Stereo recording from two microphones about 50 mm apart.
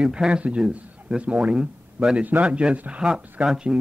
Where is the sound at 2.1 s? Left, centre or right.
Right.